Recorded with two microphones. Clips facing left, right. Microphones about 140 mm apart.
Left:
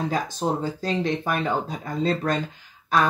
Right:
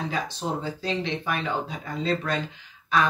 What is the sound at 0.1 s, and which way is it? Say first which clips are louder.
Speech: left 4 dB; 45° left (ahead or behind).